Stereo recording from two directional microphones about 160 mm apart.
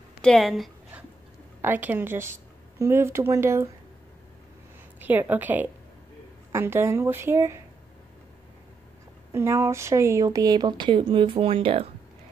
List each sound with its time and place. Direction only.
0.2 s a sound: 5° left (ahead or behind)
1.6 s speech: 10° right (ahead or behind)
4.9 s a woman's voice: 10° right (ahead or behind)
9.3 s speech: 15° right (ahead or behind); by 11.9 s 35° right (ahead or behind)